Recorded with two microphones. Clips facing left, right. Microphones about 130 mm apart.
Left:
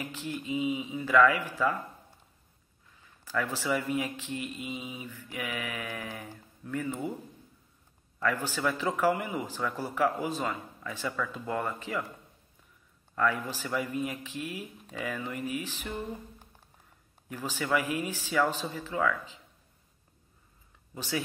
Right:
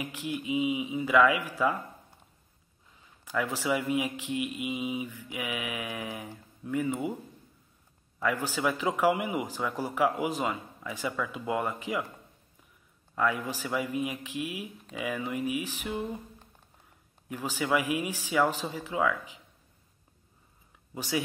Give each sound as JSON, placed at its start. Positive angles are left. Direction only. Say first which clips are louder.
{"t": 0.0, "sound": "speech", "louder": "right 2 dB", "side_deg": -10}
{"t": 3.3, "sound": "speech", "louder": "right 1 dB", "side_deg": -15}
{"t": 8.2, "sound": "speech", "louder": "right 1 dB", "side_deg": -15}
{"t": 13.1, "sound": "speech", "louder": "even", "side_deg": -10}
{"t": 17.3, "sound": "speech", "louder": "right 1 dB", "side_deg": -10}
{"t": 20.9, "sound": "speech", "louder": "right 2 dB", "side_deg": -15}